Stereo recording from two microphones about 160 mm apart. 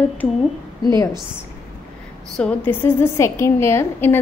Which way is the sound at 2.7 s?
15° left (ahead or behind).